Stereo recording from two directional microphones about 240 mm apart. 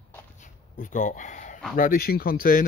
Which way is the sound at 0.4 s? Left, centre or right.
Left.